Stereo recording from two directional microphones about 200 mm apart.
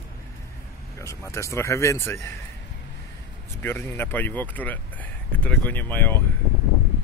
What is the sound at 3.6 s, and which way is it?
Speech, 10° left (ahead or behind).